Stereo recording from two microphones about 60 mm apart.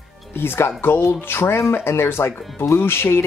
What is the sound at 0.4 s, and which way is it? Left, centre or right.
Speech, left.